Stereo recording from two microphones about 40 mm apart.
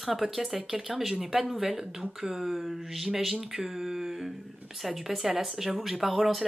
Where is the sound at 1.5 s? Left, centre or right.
Centre.